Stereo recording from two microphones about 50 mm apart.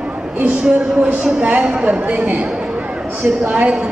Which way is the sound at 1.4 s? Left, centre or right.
Right.